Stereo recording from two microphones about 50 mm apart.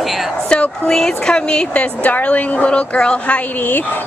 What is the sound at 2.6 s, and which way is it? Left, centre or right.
Speech, centre.